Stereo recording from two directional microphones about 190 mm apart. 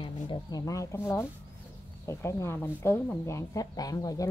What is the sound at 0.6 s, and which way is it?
Speech, 15° left (ahead or behind).